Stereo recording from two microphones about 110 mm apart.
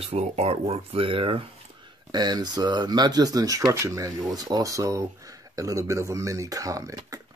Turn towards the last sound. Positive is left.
turn(degrees=-30)  # may be behind; listen again after turning